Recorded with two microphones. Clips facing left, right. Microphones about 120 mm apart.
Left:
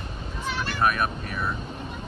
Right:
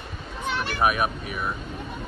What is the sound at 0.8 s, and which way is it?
Speech, 10° right (ahead or behind).